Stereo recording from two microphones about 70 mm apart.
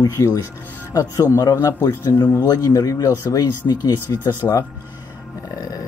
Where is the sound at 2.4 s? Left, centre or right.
Left.